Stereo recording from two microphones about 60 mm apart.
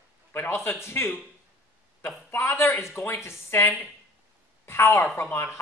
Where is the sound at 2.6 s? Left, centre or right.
Left.